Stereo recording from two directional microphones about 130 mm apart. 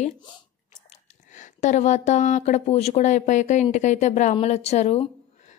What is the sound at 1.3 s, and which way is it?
Speech, 70° left (ahead or behind).